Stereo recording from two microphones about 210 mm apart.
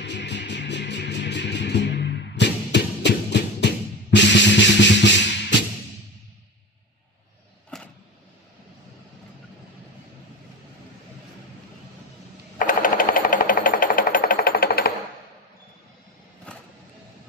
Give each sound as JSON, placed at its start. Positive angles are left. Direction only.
{"t": 0.0, "sound": "music", "side_deg": 55}
{"t": 7.7, "sound": "a sound", "side_deg": 0}
{"t": 12.5, "sound": "jackhammer", "side_deg": 40}
{"t": 16.5, "sound": "vehicle", "side_deg": 5}